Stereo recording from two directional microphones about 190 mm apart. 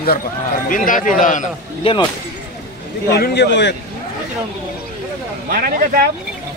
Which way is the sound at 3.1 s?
60° left (ahead or behind).